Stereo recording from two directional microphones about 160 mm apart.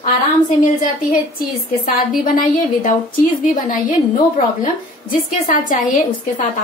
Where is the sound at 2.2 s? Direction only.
55° left (ahead or behind).